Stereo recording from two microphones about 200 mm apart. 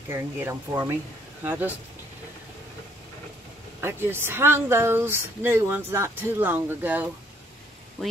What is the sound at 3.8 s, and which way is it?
Speech, 10° right (ahead or behind).